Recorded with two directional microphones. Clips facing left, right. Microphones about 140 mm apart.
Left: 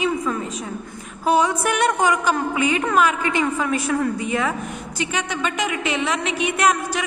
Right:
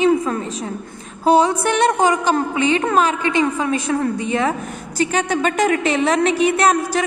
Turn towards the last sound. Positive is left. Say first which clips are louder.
# right 4 dB
turn(degrees=-35)  # may be behind; listen again after turning